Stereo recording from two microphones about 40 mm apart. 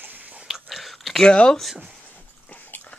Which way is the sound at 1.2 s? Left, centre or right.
Left.